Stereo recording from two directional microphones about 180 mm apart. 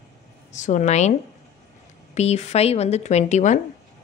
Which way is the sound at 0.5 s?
40° left (ahead or behind).